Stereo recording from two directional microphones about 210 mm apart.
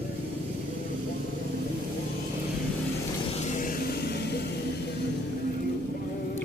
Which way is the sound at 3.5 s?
45° left (ahead or behind).